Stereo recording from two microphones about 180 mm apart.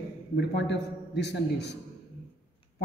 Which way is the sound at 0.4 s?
70° left (ahead or behind).